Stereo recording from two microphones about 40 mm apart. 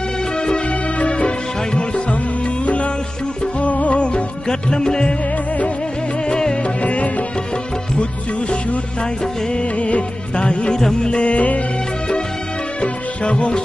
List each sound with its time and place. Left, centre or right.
0.4 s music: left
6.2 s music: left
6.6 s music: left
9.2 s music: left
12.8 s music: left